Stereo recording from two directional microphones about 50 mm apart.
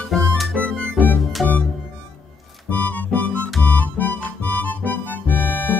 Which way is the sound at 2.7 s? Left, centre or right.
Left.